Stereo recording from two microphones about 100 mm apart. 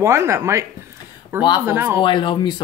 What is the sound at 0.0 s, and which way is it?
Speech, 25° right (ahead or behind).